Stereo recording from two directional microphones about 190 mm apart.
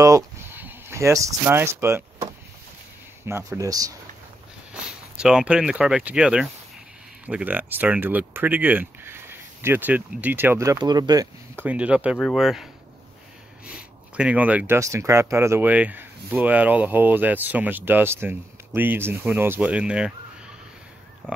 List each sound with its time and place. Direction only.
0.0 s speech: 15° right (ahead or behind)
3.3 s speech: 15° right (ahead or behind)
4.7 s speech: 5° right (ahead or behind)
14.1 s speech: 5° right (ahead or behind)